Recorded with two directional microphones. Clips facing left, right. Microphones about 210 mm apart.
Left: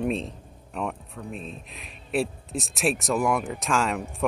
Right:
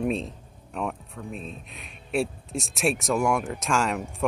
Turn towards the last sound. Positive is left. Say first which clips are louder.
# even
turn(degrees=0)  # may be behind; listen again after turning